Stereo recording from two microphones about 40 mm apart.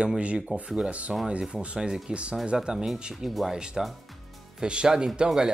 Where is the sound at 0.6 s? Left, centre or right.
Centre.